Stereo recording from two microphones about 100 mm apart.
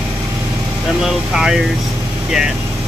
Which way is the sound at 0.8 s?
Centre (ahead or behind).